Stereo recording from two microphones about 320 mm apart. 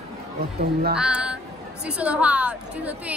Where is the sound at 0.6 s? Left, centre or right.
Right.